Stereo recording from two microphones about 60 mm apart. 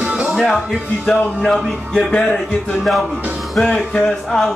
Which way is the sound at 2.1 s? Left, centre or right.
Centre.